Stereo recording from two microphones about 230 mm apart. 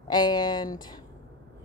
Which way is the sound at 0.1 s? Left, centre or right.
Centre.